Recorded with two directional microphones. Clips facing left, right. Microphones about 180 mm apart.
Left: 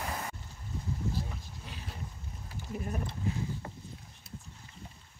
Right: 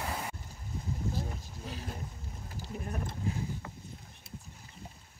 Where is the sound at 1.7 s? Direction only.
40° right (ahead or behind).